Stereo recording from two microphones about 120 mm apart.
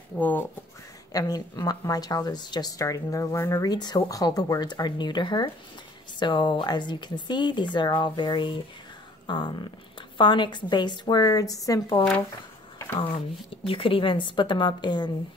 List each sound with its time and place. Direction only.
0.2 s speech: 15° left (ahead or behind)
1.1 s a woman's voice: 35° left (ahead or behind)
13.7 s a woman's voice: 50° left (ahead or behind)